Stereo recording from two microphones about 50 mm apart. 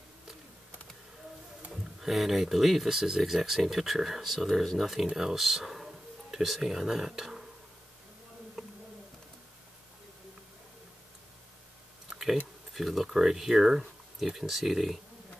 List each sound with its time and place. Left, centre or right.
1.7 s speech: centre
8.6 s a sound: centre
12.7 s speech: centre